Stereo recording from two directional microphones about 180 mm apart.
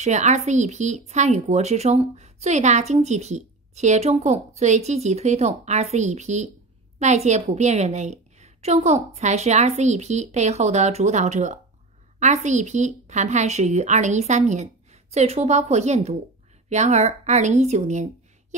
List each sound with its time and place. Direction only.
0.0 s a woman's voice: 40° right (ahead or behind)